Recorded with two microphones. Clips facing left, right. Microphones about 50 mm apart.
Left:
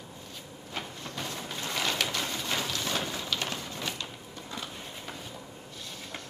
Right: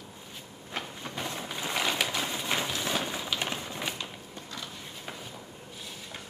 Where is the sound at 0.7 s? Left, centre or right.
Centre.